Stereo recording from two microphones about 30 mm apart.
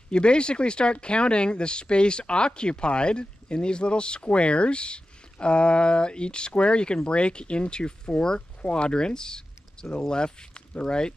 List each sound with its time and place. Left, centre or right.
0.1 s speech: left
8.4 s speech: left